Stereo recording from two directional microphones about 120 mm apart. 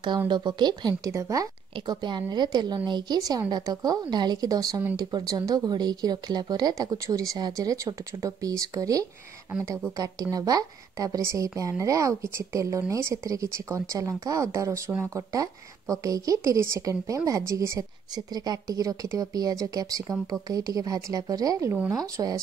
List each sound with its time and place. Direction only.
0.3 s a woman's voice: 40° right (ahead or behind)